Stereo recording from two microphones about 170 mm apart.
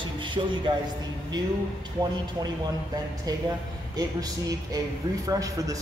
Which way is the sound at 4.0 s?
20° right (ahead or behind).